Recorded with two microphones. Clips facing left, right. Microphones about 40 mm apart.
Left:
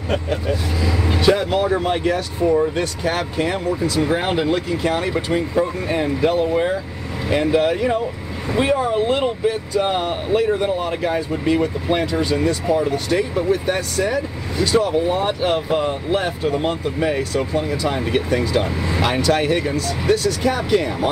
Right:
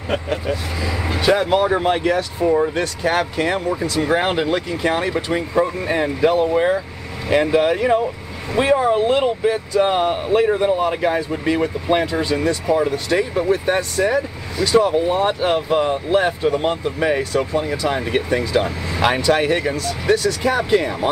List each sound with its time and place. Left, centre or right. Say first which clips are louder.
0.1 s speech: even; centre
1.5 s speech: right 2 dB; right
3.3 s speech: right 1 dB; centre
10.6 s speech: right 3 dB; centre